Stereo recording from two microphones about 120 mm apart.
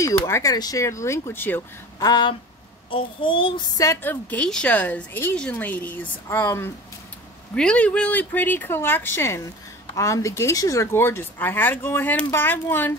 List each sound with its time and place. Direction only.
0.0 s speech: 25° left (ahead or behind)
2.0 s speech: 35° left (ahead or behind)
4.0 s a woman's voice: 15° left (ahead or behind)